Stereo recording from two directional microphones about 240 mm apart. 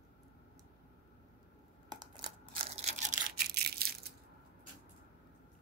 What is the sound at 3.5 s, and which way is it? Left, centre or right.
Crushing, right.